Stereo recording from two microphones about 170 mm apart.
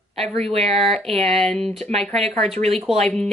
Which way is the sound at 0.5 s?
35° right (ahead or behind).